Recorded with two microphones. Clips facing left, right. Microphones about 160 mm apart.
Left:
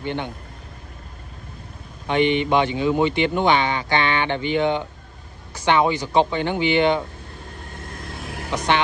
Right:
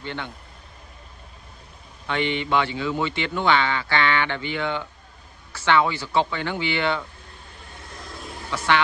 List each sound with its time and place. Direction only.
0.0 s speech: 15° left (ahead or behind)
2.0 s speech: 20° left (ahead or behind)
8.5 s speech: 20° left (ahead or behind)